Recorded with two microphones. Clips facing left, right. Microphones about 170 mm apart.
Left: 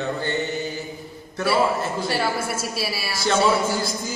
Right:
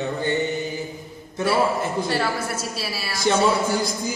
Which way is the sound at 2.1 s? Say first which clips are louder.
Even; 10° left (ahead or behind).